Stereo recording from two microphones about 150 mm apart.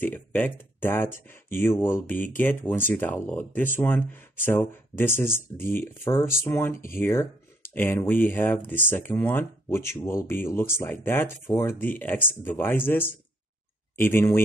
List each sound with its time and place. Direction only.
0.0 s speech: 10° left (ahead or behind)